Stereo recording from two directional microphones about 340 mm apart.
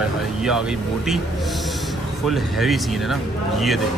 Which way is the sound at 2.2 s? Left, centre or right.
Centre.